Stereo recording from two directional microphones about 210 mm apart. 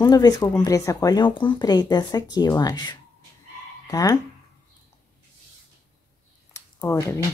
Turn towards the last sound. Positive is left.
turn(degrees=10)  # may be behind; listen again after turning